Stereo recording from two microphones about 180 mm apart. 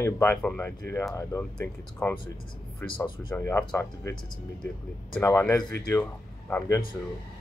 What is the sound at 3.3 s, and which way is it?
Speech, 10° left (ahead or behind).